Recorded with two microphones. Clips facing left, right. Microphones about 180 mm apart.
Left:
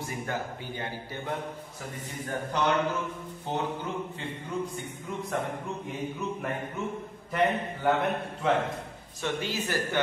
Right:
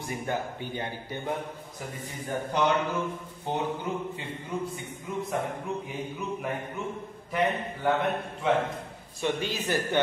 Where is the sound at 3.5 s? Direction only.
15° right (ahead or behind).